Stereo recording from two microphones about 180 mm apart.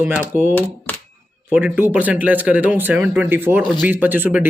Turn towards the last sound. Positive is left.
turn(degrees=-10)  # may be behind; listen again after turning